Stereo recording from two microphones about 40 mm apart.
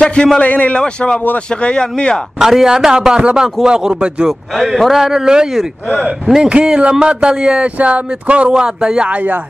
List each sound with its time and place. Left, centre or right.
0.0 s a man's voice: left
0.4 s a man's voice: left
0.7 s speech: left
2.6 s a man's voice: centre
4.3 s a man's voice: centre
5.0 s a man's voice: centre
6.5 s speech: right